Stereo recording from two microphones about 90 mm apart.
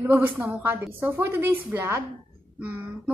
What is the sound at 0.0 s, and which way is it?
A woman's voice, 25° right (ahead or behind).